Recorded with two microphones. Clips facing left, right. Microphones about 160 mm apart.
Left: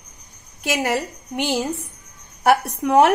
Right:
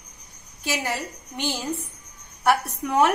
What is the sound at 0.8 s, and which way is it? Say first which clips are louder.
A woman's voice: left 7 dB; 65° left (ahead or behind).